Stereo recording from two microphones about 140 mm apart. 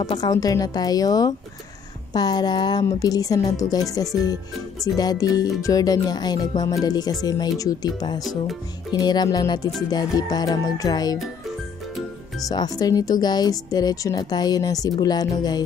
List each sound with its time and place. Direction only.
0.2 s speech: 25° left (ahead or behind)
8.2 s music: centre (ahead or behind)
9.0 s speech: 30° left (ahead or behind)
12.4 s speech: 25° left (ahead or behind)